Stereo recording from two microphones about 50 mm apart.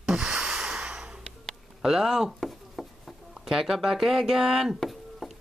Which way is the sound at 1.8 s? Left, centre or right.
Centre.